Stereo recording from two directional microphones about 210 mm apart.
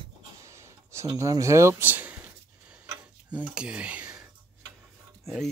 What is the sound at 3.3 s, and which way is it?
Speech, 5° right (ahead or behind).